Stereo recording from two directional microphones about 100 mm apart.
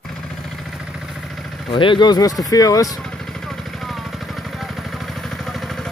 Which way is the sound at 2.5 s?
35° left (ahead or behind).